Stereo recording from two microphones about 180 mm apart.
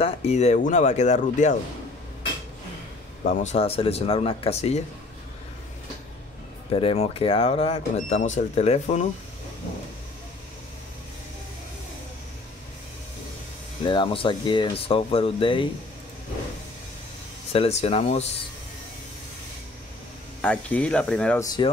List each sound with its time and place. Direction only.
0.0 s speech: 40° left (ahead or behind)
3.3 s speech: 40° left (ahead or behind)
6.7 s speech: 30° left (ahead or behind)
13.8 s speech: 30° left (ahead or behind)
17.5 s speech: 35° left (ahead or behind)
20.4 s speech: 5° left (ahead or behind)
21.4 s speech: 20° left (ahead or behind)